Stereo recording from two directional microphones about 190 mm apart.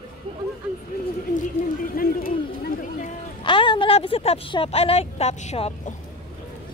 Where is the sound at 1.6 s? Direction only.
45° left (ahead or behind).